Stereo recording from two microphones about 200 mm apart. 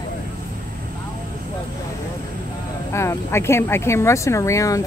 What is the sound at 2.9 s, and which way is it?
A woman's voice, 15° left (ahead or behind).